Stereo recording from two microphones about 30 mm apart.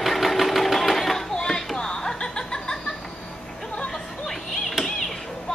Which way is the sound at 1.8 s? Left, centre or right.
Left.